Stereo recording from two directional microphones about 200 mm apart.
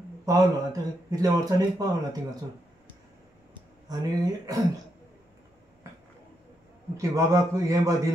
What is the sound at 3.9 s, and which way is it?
Speech, 20° right (ahead or behind).